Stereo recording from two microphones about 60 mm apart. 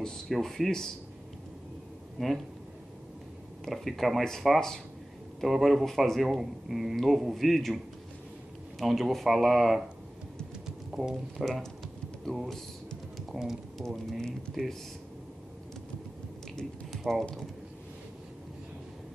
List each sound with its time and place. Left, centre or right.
0.3 s a man's voice: centre
2.1 s speech: centre
3.6 s a man's voice: centre
10.9 s a sound: centre
11.3 s a man's voice: centre
13.8 s a man's voice: centre
16.9 s speech: centre